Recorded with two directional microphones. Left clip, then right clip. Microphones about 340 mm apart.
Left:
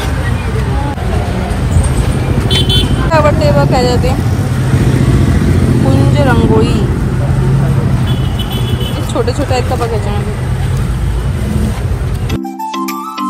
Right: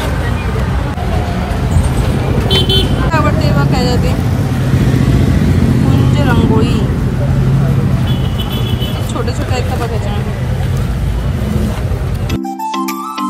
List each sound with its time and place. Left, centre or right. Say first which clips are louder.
2.6 s vehicle: even; right
3.1 s vehicle: left 9 dB; centre
6.1 s speech: left 3 dB; centre